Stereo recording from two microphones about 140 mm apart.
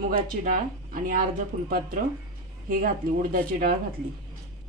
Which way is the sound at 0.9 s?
80° right.